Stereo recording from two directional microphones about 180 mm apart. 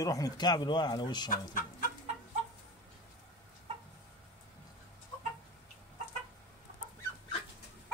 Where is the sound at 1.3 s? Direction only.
50° left (ahead or behind).